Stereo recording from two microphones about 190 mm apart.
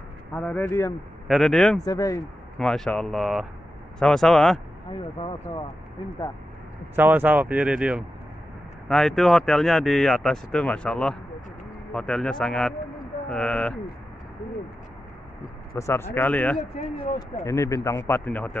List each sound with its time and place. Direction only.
0.3 s speech: 5° left (ahead or behind)
1.2 s speech: centre (ahead or behind)
1.9 s speech: 20° left (ahead or behind)
2.6 s speech: 5° left (ahead or behind)
7.0 s speech: 10° right (ahead or behind); by 13.7 s 5° left (ahead or behind)
15.7 s speech: 15° left (ahead or behind)